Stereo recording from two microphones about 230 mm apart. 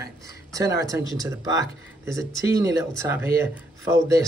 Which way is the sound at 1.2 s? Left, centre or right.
Centre.